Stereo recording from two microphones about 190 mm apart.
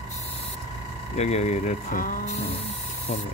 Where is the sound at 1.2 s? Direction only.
35° left (ahead or behind).